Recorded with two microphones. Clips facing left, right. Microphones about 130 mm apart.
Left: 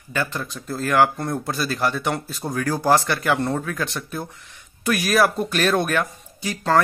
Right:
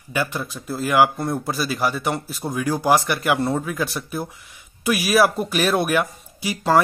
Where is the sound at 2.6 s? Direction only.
15° right (ahead or behind).